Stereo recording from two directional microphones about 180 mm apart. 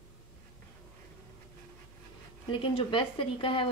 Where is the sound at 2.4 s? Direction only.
30° left (ahead or behind).